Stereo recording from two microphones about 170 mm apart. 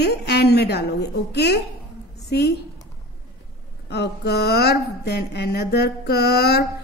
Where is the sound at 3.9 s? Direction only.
75° left (ahead or behind).